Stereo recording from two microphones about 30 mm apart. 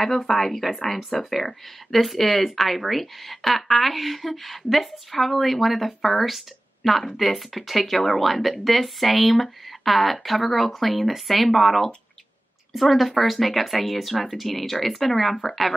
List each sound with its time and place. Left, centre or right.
0.3 s speech: centre